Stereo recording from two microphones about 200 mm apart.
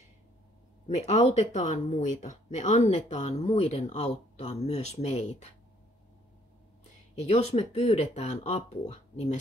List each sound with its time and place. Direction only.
0.8 s speech: 35° left (ahead or behind)
7.2 s speech: 30° left (ahead or behind)